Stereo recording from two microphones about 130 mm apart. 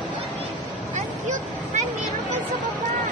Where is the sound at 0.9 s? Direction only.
70° right (ahead or behind).